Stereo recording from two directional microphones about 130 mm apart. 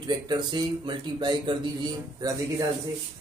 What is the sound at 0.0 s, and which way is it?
Speech, 35° right (ahead or behind).